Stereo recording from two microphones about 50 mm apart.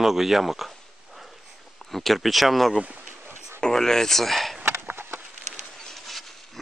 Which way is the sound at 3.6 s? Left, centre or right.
Centre.